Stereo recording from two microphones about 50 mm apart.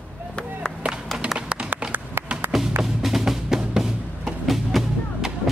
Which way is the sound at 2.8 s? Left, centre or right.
Centre.